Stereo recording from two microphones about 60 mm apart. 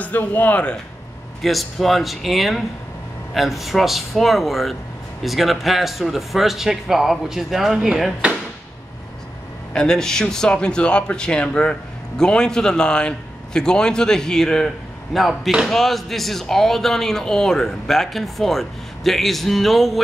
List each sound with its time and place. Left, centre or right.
0.0 s speech: left
1.4 s speech: centre
8.2 s speech: centre
9.8 s a man's voice: centre